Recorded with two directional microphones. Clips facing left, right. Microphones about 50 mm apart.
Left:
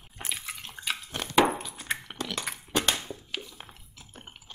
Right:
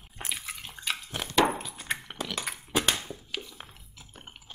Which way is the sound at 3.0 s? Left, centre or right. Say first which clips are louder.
Even; centre.